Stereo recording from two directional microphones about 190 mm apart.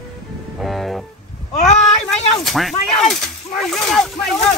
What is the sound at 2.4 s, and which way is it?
Speech, centre (ahead or behind).